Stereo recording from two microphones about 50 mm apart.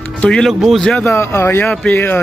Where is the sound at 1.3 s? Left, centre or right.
Left.